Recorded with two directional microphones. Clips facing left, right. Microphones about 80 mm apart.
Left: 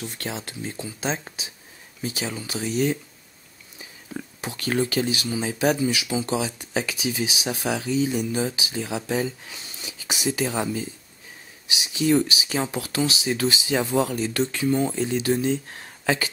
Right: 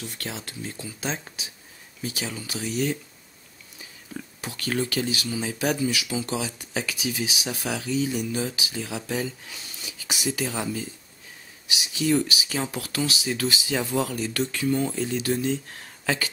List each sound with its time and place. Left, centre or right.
0.2 s speech: left
4.4 s speech: left